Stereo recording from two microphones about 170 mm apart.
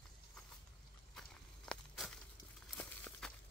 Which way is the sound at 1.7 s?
5° left (ahead or behind).